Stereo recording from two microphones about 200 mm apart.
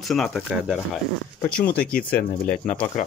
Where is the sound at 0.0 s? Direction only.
Centre (ahead or behind).